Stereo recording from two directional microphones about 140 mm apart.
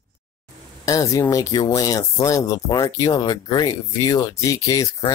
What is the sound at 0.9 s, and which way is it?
Speech, 25° left (ahead or behind).